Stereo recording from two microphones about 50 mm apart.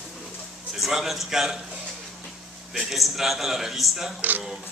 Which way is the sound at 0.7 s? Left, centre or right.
Centre.